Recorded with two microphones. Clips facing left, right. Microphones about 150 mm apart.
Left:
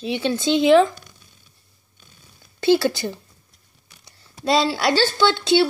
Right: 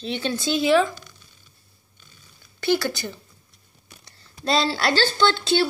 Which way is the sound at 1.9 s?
55° left (ahead or behind).